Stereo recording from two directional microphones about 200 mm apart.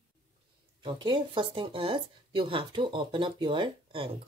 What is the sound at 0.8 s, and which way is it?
Speech, 25° right (ahead or behind).